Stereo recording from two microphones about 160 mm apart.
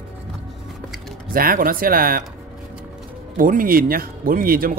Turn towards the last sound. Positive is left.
turn(degrees=-65)  # may be behind; listen again after turning